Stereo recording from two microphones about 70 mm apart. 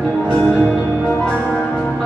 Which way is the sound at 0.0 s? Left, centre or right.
Centre.